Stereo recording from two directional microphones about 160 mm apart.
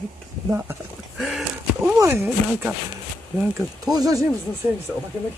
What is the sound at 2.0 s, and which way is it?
Speech, 15° right (ahead or behind).